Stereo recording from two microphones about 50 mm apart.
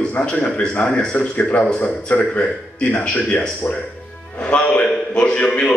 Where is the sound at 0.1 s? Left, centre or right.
Left.